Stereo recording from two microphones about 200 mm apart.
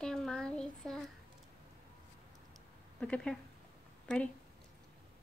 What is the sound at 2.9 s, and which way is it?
Speech, 5° left (ahead or behind).